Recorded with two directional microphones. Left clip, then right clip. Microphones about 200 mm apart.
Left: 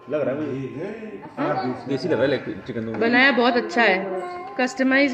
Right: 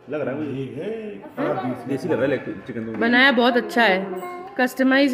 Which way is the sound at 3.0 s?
30° right (ahead or behind).